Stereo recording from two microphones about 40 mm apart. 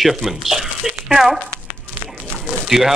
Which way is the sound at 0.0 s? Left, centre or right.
Centre.